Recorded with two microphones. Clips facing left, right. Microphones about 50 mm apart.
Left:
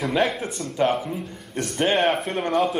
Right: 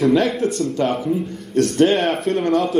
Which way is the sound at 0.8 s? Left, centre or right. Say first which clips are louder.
Right 3 dB; centre.